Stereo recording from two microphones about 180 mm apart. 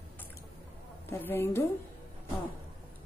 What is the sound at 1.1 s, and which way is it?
Speech, 15° left (ahead or behind).